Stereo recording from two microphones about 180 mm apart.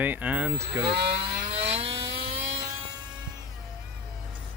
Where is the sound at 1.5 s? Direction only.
35° right (ahead or behind).